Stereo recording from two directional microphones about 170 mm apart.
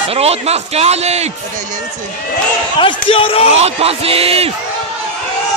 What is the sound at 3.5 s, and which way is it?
A man's voice, 35° right (ahead or behind).